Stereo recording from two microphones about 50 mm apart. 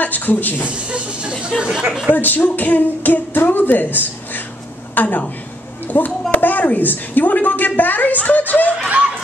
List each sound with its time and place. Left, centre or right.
0.0 s speech: left
0.7 s speech: right
2.1 s a woman's voice: left
8.8 s snicker: right